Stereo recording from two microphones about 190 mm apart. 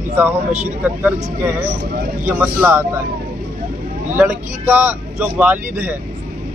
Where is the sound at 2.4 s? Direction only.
10° right (ahead or behind).